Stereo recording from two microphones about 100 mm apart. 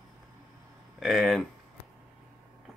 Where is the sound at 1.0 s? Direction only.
Centre (ahead or behind).